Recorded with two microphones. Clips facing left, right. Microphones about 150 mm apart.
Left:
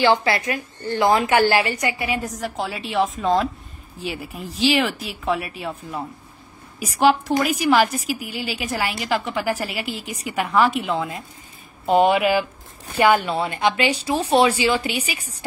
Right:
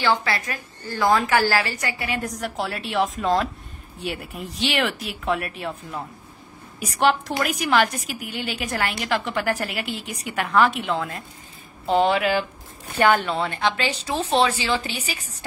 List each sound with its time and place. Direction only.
0.0 s speech: 30° left (ahead or behind); by 2.2 s 15° left (ahead or behind)
2.2 s a woman's voice: centre (ahead or behind)
11.8 s a woman's voice: 15° left (ahead or behind)